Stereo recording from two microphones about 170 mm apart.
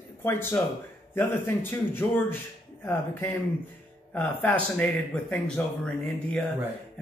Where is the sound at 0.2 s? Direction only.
15° left (ahead or behind).